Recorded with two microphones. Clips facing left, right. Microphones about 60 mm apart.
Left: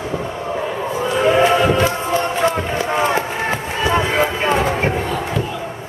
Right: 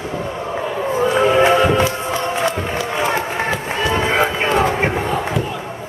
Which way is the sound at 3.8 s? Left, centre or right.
Centre.